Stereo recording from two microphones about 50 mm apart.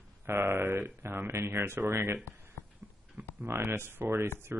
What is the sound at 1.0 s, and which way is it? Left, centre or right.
Speech, right.